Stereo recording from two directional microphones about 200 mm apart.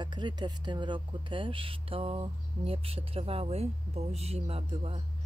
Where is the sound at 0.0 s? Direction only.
25° right (ahead or behind).